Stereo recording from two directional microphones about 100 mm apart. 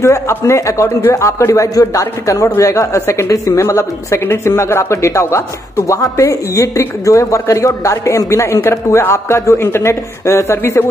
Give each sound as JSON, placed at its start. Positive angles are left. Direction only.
{"t": 0.0, "sound": "a man's voice", "side_deg": 25}